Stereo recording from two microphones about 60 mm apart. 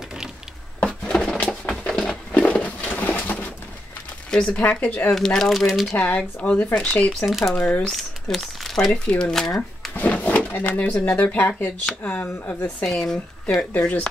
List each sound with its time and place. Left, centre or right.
0.8 s a sound: centre; by 3.5 s left
4.3 s speech: centre
4.6 s speech: left
5.1 s speech: centre
5.9 s speech: left
7.2 s speech: centre
7.5 s speech: left
7.8 s speech: centre
9.9 s a sound: left
11.1 s speech: left
12.8 s speech: centre
13.6 s speech: left